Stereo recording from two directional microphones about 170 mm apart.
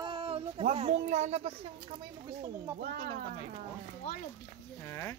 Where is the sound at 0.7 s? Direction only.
40° right (ahead or behind).